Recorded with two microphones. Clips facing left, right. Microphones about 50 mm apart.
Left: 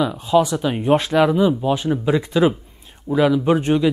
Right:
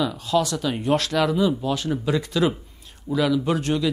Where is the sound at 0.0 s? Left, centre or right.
Left.